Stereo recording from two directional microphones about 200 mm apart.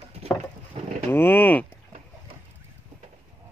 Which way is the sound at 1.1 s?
10° left (ahead or behind).